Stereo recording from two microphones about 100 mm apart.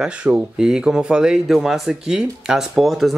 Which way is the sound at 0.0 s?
10° right (ahead or behind).